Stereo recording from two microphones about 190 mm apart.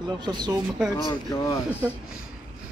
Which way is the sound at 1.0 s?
20° left (ahead or behind).